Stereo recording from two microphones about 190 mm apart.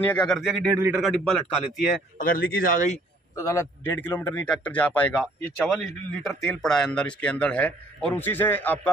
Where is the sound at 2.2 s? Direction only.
50° left (ahead or behind).